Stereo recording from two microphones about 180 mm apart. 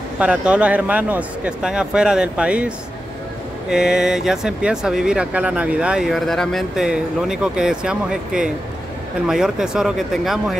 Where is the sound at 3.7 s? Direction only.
5° right (ahead or behind).